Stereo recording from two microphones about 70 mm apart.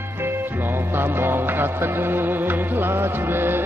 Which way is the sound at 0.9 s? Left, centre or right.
Right.